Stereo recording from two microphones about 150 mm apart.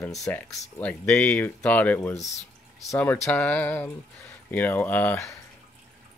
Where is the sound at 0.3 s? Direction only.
10° left (ahead or behind).